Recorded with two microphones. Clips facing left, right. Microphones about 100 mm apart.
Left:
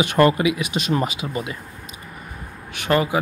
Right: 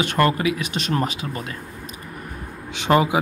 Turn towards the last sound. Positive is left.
turn(degrees=-20)  # may be behind; listen again after turning